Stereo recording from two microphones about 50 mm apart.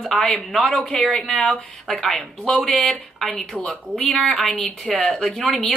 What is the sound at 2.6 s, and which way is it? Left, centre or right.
Speech, centre.